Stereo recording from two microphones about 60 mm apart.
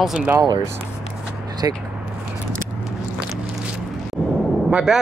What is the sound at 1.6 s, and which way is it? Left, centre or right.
Speech, right.